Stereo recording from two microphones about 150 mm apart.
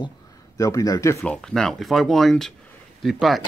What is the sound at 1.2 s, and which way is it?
Speech, 5° left (ahead or behind).